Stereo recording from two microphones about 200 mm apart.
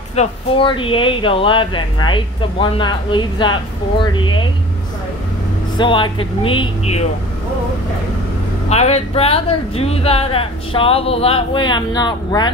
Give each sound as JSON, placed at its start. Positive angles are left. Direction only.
{"t": 0.1, "sound": "speech", "side_deg": 30}
{"t": 5.8, "sound": "speech", "side_deg": 25}
{"t": 8.6, "sound": "speech", "side_deg": 35}